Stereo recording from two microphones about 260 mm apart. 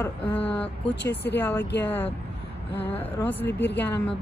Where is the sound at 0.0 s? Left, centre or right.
Centre.